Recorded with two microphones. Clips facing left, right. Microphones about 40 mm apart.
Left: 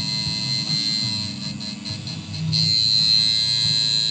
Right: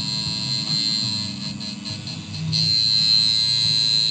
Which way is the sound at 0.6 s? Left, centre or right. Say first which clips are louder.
Even; centre.